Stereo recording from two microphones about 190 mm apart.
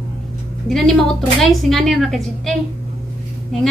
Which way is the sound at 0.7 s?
5° left (ahead or behind).